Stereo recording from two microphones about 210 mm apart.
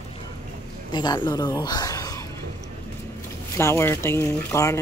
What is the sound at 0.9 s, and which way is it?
A woman's voice, 20° left (ahead or behind).